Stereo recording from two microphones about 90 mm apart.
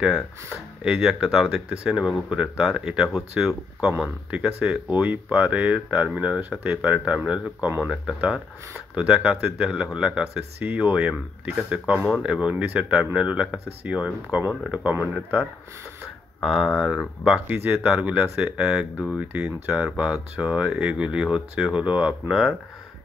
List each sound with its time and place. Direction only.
0.8 s speech: 5° right (ahead or behind)
8.9 s speech: 15° right (ahead or behind)
16.3 s speech: centre (ahead or behind)
17.2 s speech: 15° right (ahead or behind)
19.1 s speech: 15° right (ahead or behind)